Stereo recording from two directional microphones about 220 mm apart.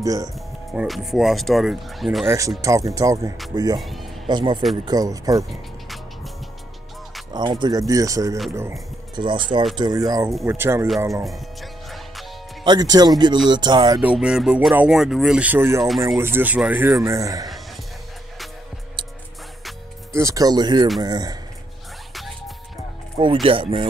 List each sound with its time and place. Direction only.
0.0 s speech: 15° right (ahead or behind)
0.3 s speech: centre (ahead or behind)
2.6 s speech: 15° right (ahead or behind)
7.3 s speech: 20° right (ahead or behind)
12.6 s speech: 20° right (ahead or behind)
14.0 s speech: 5° right (ahead or behind)
20.1 s speech: 15° right (ahead or behind)
23.4 s speech: 25° right (ahead or behind)